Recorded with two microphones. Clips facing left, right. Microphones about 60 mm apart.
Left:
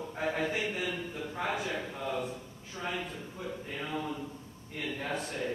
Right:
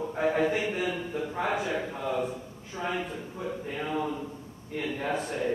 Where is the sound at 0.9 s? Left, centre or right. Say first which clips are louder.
Right 5 dB; centre.